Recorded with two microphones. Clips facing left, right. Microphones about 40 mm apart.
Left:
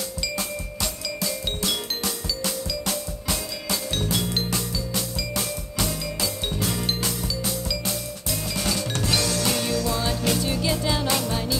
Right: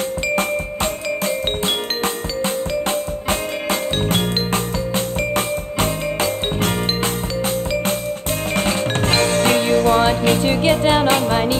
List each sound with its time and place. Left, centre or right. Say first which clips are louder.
2.4 s music: right 9 dB; right
8.5 s music: right 8 dB; right